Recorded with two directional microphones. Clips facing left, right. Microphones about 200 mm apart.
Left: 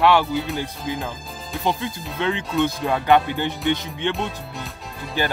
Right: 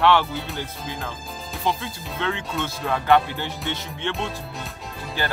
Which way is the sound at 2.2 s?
20° left (ahead or behind).